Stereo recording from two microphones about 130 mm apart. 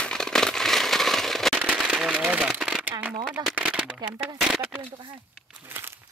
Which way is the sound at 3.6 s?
10° right (ahead or behind).